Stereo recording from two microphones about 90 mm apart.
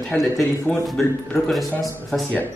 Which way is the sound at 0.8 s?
Centre (ahead or behind).